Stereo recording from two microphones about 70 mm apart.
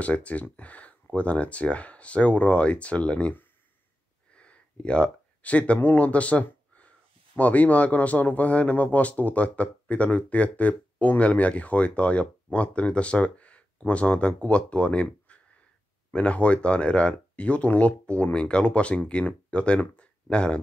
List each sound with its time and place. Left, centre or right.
0.0 s speech: centre
4.3 s a sound: centre
7.3 s speech: left